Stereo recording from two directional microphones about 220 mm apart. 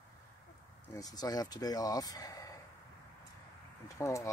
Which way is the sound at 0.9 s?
15° left (ahead or behind).